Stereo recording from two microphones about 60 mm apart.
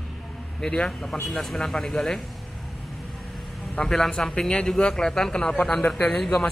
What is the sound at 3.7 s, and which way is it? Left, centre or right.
A man's voice, centre.